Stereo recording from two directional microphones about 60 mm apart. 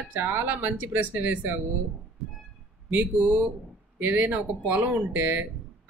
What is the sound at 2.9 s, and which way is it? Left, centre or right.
Speech, right.